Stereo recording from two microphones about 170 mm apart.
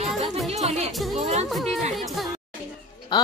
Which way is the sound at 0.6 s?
40° right (ahead or behind).